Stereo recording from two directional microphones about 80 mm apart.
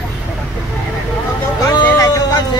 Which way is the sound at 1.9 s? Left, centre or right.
Left.